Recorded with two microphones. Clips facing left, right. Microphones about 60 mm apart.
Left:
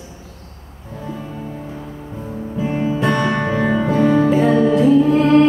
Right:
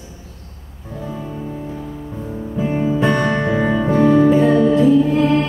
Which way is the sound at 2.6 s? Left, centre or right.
Centre.